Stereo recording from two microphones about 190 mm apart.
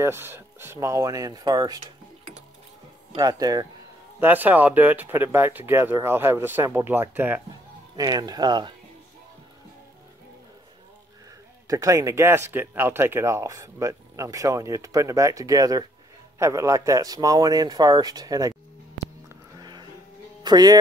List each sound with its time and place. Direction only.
0.0 s speech: 15° right (ahead or behind)
3.2 s speech: 20° right (ahead or behind)
4.2 s speech: 10° right (ahead or behind)
7.9 s speech: 20° right (ahead or behind)
11.6 s speech: 15° right (ahead or behind)
19.6 s music: 20° right (ahead or behind)
20.4 s speech: 20° right (ahead or behind)